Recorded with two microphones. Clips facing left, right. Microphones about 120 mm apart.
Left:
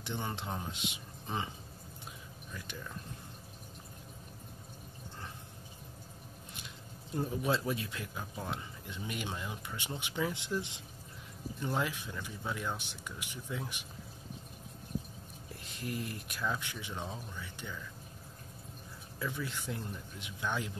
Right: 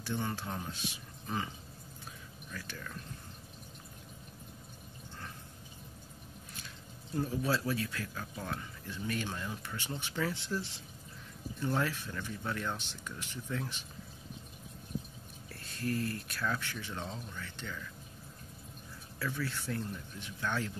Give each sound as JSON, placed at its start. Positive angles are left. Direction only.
{"t": 0.0, "sound": "speech", "side_deg": 20}
{"t": 2.5, "sound": "speech", "side_deg": 20}
{"t": 7.2, "sound": "speech", "side_deg": 20}
{"t": 15.6, "sound": "speech", "side_deg": 15}
{"t": 19.1, "sound": "speech", "side_deg": 15}